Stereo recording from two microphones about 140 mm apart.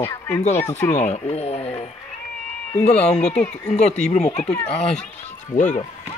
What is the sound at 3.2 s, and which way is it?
Speech, 5° left (ahead or behind).